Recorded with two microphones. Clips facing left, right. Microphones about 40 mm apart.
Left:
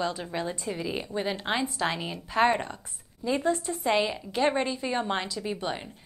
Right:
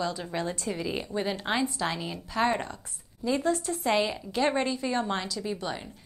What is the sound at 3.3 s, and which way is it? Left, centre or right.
Speech, centre.